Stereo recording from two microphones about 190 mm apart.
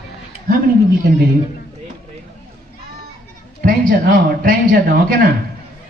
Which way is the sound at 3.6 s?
50° right (ahead or behind).